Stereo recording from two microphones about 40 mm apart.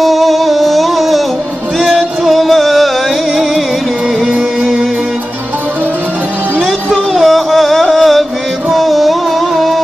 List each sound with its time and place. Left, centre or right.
0.0 s music: centre
4.3 s music: centre
6.6 s music: centre